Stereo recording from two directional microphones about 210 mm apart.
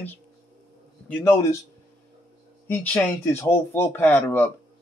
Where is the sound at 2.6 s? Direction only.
10° left (ahead or behind).